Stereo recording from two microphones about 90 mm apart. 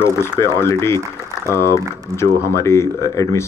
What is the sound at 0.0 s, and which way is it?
Speech, 30° left (ahead or behind).